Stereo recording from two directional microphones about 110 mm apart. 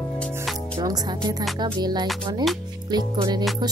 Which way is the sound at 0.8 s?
35° right (ahead or behind).